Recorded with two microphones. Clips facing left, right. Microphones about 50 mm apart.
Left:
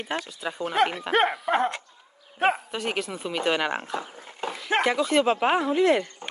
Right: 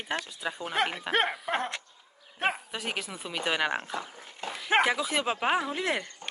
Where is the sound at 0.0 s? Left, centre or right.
Centre.